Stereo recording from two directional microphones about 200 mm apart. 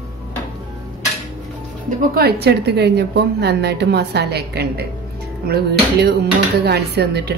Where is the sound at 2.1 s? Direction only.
55° right (ahead or behind).